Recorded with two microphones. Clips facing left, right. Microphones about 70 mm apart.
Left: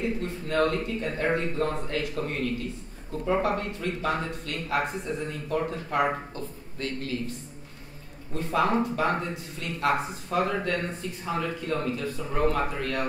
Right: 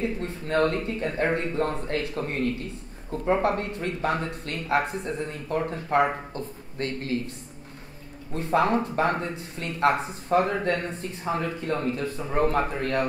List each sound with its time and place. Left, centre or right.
0.2 s speech: right
8.3 s speech: right